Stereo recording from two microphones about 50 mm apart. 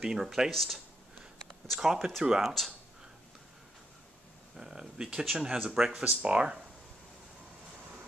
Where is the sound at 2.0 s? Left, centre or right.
Right.